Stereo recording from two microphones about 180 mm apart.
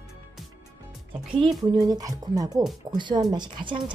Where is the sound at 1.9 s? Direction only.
20° right (ahead or behind).